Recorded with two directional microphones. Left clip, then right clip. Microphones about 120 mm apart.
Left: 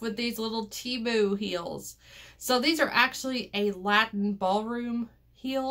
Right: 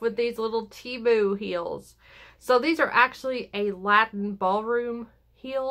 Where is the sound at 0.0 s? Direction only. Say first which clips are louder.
Right 6 dB; 35° right (ahead or behind).